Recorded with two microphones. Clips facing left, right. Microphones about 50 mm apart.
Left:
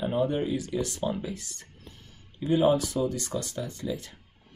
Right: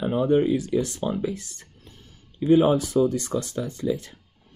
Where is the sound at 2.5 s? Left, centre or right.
Right.